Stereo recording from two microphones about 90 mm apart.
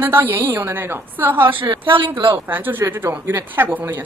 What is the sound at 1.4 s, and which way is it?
Speech, 70° right (ahead or behind).